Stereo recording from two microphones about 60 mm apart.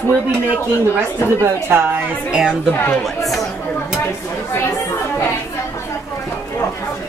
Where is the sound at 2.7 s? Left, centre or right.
Left.